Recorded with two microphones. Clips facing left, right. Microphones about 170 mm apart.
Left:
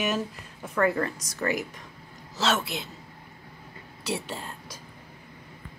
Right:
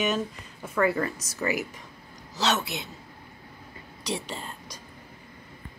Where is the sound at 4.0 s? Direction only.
5° left (ahead or behind).